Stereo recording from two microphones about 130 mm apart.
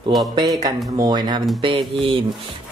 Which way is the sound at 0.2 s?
30° right (ahead or behind).